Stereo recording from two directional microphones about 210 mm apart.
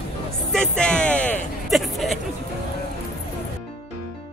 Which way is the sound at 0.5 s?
5° left (ahead or behind).